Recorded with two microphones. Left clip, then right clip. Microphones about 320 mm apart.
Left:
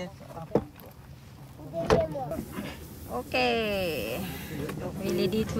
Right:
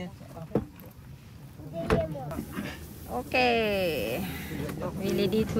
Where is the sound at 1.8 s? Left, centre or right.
Left.